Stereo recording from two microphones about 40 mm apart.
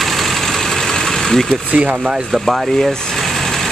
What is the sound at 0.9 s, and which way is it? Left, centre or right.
Vehicle, centre.